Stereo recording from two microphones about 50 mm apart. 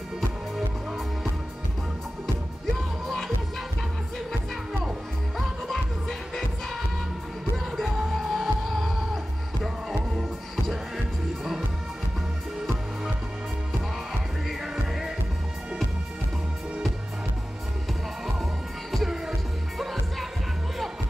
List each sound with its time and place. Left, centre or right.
2.6 s music: centre
5.7 s music: centre
14.6 s music: centre
18.2 s music: centre